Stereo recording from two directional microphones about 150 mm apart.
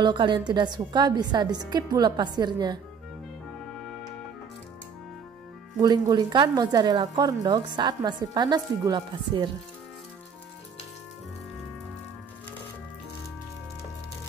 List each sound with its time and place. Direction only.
0.0 s a woman's voice: 30° right (ahead or behind)
5.8 s a woman's voice: 25° right (ahead or behind)